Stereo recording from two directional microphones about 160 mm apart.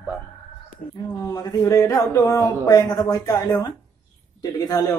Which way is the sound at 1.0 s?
20° left (ahead or behind).